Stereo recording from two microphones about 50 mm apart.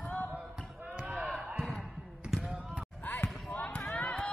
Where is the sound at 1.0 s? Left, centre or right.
Right.